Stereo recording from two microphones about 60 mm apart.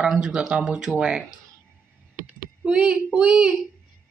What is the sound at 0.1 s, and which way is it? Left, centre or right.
Speech, centre.